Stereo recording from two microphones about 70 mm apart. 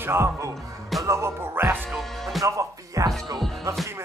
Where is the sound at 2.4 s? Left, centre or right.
Right.